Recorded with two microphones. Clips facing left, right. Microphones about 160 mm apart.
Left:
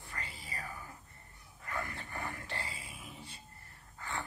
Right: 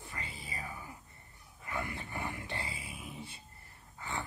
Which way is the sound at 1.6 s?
15° right (ahead or behind).